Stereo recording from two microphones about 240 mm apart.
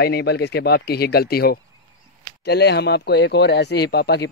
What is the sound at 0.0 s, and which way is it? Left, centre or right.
Speech, left.